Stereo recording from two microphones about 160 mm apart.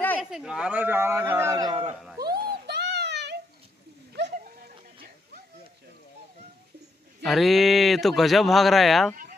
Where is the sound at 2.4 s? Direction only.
90° right.